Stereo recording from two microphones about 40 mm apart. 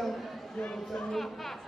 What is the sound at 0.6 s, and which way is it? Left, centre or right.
Speech, left.